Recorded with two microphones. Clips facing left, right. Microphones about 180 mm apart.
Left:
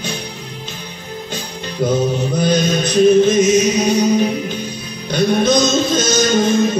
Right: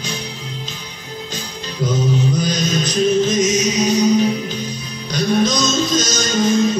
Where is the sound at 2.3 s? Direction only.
55° left (ahead or behind).